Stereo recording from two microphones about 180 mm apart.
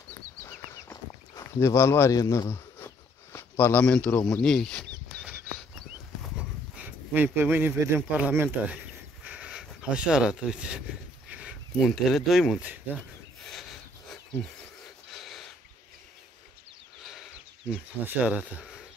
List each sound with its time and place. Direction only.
1.3 s speech: 15° left (ahead or behind)
6.8 s speech: 10° right (ahead or behind)
9.2 s a sound: 5° right (ahead or behind)
11.2 s speech: 5° right (ahead or behind)
13.5 s snort: centre (ahead or behind)
15.1 s a sound: centre (ahead or behind)
17.6 s speech: 5° right (ahead or behind)